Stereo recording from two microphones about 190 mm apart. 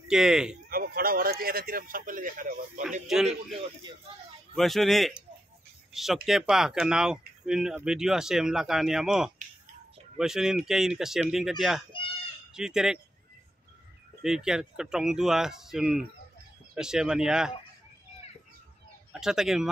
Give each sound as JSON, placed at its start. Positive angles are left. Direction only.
{"t": 0.1, "sound": "speech", "side_deg": -5}
{"t": 0.7, "sound": "speech", "side_deg": -50}
{"t": 3.1, "sound": "speech", "side_deg": 0}
{"t": 4.6, "sound": "speech", "side_deg": 0}
{"t": 14.2, "sound": "speech", "side_deg": -5}
{"t": 19.1, "sound": "speech", "side_deg": -5}